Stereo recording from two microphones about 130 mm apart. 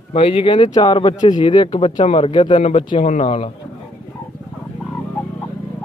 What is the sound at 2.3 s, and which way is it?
Speech, 40° left (ahead or behind).